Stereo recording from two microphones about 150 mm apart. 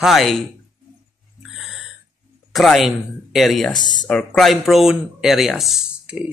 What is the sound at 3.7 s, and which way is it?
Speech, 30° left (ahead or behind).